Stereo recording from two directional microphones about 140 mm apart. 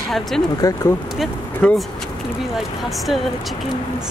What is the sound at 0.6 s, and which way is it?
Speech, 25° left (ahead or behind).